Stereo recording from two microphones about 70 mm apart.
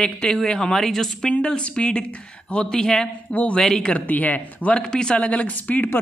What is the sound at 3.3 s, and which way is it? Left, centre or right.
Speech, left.